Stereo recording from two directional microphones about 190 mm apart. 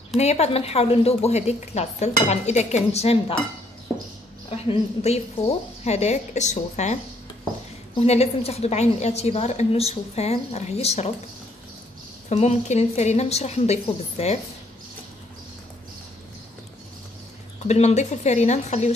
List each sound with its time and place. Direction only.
0.2 s a woman's voice: 35° left (ahead or behind)
4.5 s a woman's voice: 35° left (ahead or behind)
8.0 s a woman's voice: 35° left (ahead or behind)
12.3 s a woman's voice: 35° left (ahead or behind)
17.6 s a woman's voice: 35° left (ahead or behind)